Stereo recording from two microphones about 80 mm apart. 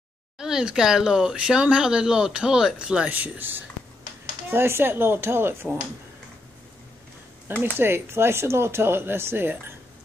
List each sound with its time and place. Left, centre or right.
0.4 s speech: centre; by 5.8 s right
7.7 s speech: right